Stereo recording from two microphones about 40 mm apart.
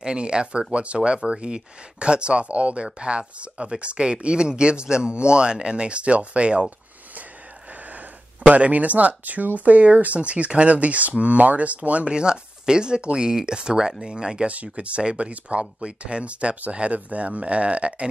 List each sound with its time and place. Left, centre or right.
0.0 s speech: right
7.9 s speech: right
12.1 s speech: centre
14.5 s speech: right